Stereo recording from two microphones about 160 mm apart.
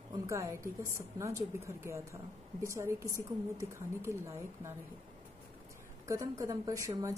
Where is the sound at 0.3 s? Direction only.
20° right (ahead or behind).